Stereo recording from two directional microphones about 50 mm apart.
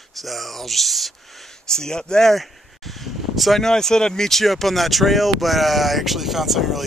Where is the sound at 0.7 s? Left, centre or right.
Centre.